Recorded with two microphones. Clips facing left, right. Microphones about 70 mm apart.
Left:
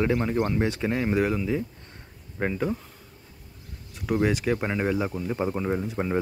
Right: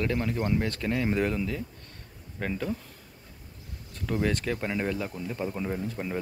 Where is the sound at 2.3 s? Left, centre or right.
Left.